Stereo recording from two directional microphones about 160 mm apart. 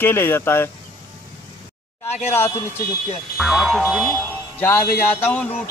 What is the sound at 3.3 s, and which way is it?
Music, centre (ahead or behind).